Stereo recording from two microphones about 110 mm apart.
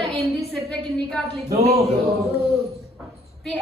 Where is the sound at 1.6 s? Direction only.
70° right (ahead or behind).